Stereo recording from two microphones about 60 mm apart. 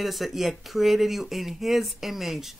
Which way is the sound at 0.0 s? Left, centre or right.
Centre.